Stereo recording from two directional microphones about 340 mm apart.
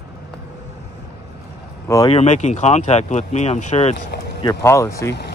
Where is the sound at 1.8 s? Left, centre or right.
Centre.